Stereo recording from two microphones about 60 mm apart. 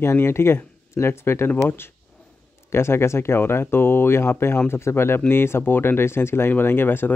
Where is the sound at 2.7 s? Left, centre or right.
Left.